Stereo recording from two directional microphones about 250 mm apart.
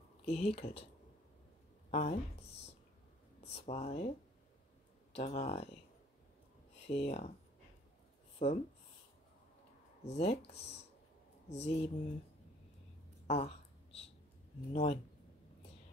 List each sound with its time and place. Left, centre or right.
0.2 s speech: left
1.9 s speech: left
3.4 s speech: left
5.1 s speech: left
6.9 s speech: left
8.4 s speech: left
10.0 s speech: left
11.5 s speech: left
13.3 s a sound: left
14.7 s speech: left